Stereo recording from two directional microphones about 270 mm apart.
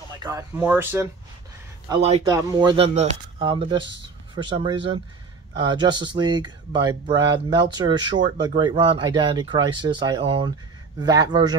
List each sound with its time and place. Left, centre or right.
0.2 s speech: centre
1.9 s speech: right